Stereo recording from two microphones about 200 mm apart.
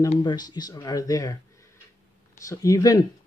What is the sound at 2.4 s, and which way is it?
Speech, 15° left (ahead or behind).